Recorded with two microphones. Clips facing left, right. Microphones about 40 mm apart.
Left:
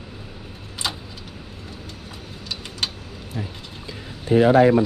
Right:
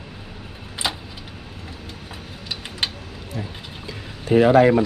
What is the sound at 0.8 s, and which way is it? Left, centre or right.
Vehicle, centre.